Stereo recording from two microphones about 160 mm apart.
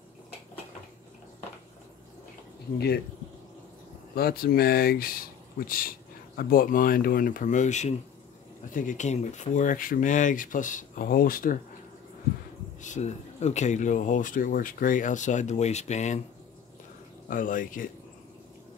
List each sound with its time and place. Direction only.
4.1 s speech: 70° left (ahead or behind)
12.8 s speech: 45° left (ahead or behind)
17.3 s speech: 55° left (ahead or behind)